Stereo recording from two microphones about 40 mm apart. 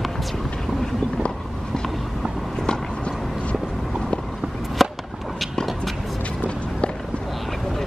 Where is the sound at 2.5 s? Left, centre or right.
Centre.